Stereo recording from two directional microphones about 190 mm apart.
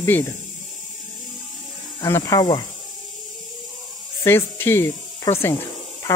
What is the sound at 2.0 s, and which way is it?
Speech, 15° left (ahead or behind).